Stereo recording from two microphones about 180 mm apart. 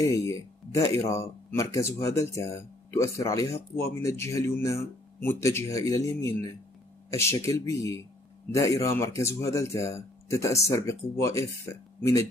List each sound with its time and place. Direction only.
0.0 s speech: 15° left (ahead or behind)